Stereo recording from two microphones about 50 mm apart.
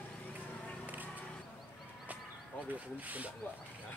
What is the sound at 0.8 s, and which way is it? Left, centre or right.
Music, right.